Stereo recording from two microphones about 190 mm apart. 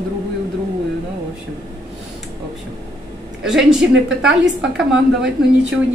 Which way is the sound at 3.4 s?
Centre (ahead or behind).